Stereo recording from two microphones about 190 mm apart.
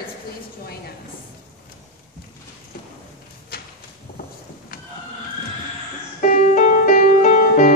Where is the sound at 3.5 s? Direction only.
55° left (ahead or behind).